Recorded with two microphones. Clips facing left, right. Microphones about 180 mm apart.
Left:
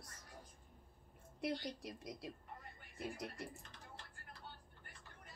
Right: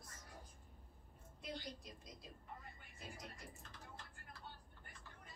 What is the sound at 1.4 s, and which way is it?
A woman's voice, 70° left (ahead or behind).